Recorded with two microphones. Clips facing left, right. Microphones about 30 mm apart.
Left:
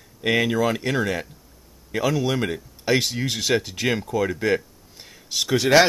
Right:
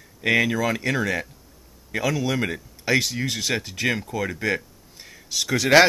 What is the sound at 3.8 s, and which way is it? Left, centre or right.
Speech, centre.